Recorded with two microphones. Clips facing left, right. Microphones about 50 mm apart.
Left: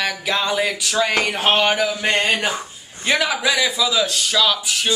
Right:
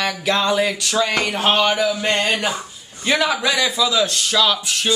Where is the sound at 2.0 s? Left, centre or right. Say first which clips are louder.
Even; centre.